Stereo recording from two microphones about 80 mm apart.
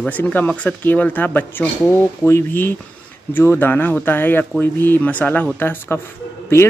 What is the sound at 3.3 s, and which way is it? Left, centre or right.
Speech, left.